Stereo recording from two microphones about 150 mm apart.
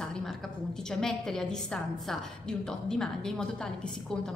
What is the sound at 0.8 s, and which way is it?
A woman's voice, 5° left (ahead or behind).